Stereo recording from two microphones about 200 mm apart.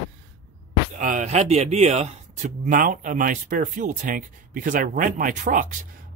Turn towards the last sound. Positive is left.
turn(degrees=-40)  # may be behind; listen again after turning